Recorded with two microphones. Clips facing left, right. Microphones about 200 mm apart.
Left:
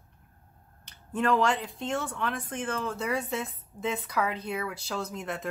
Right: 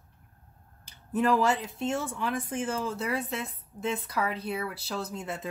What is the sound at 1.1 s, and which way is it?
Speech, 10° right (ahead or behind).